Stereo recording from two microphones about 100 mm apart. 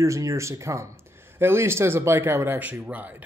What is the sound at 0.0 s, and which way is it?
Speech, 30° right (ahead or behind).